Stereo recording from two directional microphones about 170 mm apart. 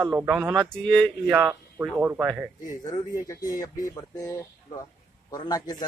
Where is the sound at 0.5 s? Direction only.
5° left (ahead or behind).